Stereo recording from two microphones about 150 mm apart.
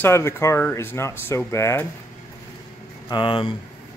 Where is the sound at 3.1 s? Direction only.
35° left (ahead or behind).